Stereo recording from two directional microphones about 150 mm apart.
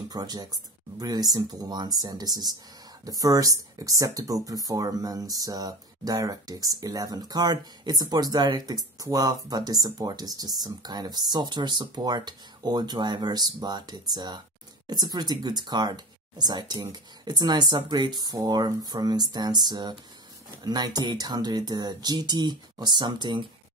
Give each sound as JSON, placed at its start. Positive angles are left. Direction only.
{"t": 0.1, "sound": "speech", "side_deg": -25}